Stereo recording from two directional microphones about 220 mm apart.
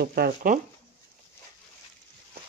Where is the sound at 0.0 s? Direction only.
45° right (ahead or behind).